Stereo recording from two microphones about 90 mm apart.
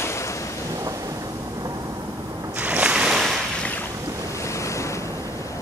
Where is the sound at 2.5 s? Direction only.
15° right (ahead or behind).